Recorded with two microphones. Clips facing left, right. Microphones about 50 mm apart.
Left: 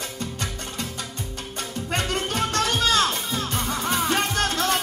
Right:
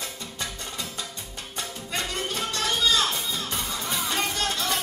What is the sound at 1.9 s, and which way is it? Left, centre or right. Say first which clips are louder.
Music: left 5 dB; left.